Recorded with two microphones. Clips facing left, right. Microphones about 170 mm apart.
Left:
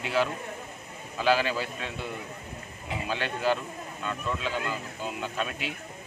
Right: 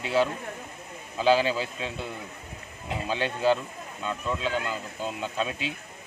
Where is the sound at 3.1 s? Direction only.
30° right (ahead or behind).